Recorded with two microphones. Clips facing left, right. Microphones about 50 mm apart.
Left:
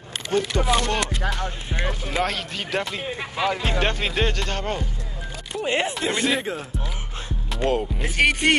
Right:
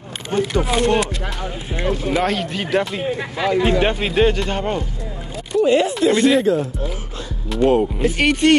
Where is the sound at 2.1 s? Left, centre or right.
Centre.